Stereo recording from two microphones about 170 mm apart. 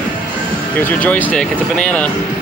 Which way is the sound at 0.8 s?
10° left (ahead or behind).